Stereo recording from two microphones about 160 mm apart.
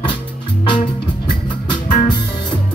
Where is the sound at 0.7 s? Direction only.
30° left (ahead or behind).